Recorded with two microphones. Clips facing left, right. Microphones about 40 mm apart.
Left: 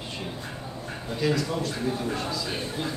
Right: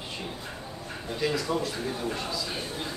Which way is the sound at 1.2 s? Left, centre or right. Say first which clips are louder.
Left 2 dB; centre.